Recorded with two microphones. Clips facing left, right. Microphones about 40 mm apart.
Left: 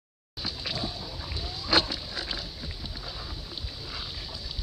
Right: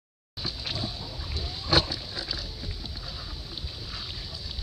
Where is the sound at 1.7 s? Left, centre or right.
Left.